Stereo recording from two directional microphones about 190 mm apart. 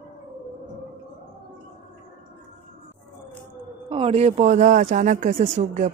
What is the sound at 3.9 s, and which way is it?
Speech, 30° right (ahead or behind).